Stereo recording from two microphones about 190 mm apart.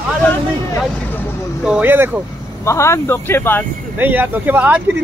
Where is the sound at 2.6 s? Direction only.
15° left (ahead or behind).